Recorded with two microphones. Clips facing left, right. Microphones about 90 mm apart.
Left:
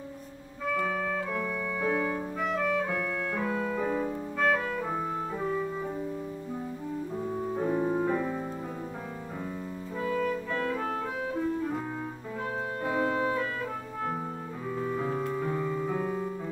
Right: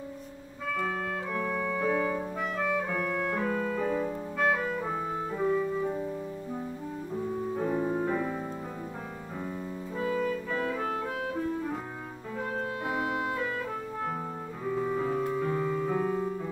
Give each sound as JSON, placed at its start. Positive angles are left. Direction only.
{"t": 1.8, "sound": "music", "side_deg": 5}
{"t": 2.0, "sound": "clarinet", "side_deg": -5}
{"t": 3.4, "sound": "music", "side_deg": 10}
{"t": 4.4, "sound": "music", "side_deg": -5}
{"t": 7.5, "sound": "music", "side_deg": 0}
{"t": 9.9, "sound": "music", "side_deg": -20}
{"t": 12.8, "sound": "music", "side_deg": -10}
{"t": 14.7, "sound": "music", "side_deg": -5}